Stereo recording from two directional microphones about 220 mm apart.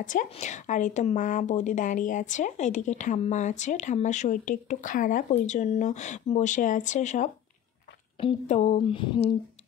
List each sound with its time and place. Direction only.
0.0 s a woman's voice: 35° left (ahead or behind)